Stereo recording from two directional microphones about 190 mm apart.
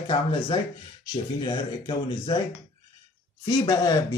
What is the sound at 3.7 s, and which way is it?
Speech, 20° left (ahead or behind).